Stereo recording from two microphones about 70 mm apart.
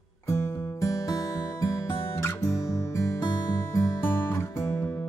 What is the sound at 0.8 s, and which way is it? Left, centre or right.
Music, left.